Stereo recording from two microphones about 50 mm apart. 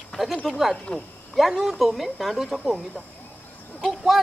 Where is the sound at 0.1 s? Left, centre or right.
Centre.